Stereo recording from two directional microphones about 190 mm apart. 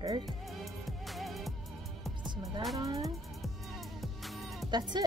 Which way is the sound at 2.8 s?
15° right (ahead or behind).